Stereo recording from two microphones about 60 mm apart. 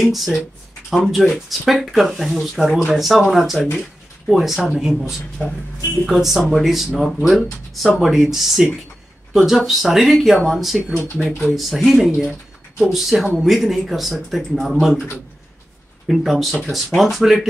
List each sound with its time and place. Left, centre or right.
0.0 s speech: centre
5.4 s speech: left
6.0 s speech: centre
16.1 s speech: centre